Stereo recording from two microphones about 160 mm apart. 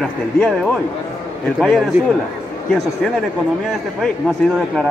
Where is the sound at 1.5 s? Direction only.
Centre (ahead or behind).